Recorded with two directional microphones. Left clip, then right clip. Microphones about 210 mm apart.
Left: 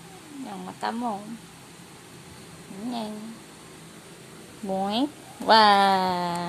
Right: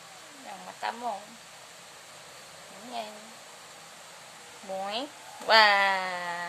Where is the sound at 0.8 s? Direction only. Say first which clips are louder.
Left 4 dB; 15° left (ahead or behind).